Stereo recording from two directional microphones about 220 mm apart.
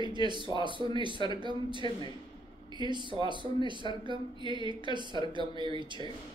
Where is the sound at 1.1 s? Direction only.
20° left (ahead or behind).